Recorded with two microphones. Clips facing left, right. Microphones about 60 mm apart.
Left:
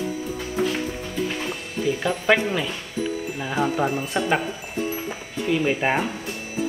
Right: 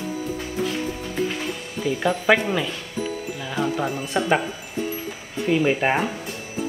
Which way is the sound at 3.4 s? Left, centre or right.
Left.